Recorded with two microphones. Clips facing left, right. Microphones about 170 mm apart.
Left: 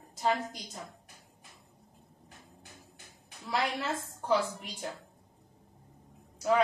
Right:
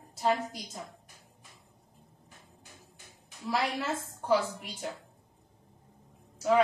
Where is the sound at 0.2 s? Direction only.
Centre (ahead or behind).